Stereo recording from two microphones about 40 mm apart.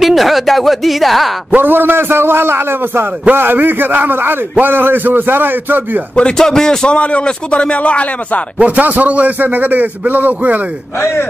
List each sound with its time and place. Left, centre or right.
0.0 s speech: centre
1.6 s a man's voice: right
3.3 s a man's voice: right
6.3 s speech: centre
6.9 s speech: left
8.5 s speech: right